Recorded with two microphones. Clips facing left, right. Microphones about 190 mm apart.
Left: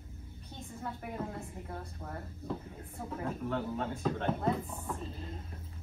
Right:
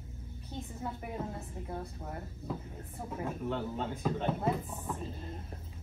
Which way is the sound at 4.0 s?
5° right (ahead or behind).